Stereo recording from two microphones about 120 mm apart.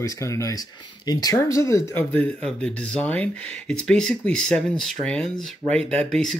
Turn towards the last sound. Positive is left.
turn(degrees=5)  # may be behind; listen again after turning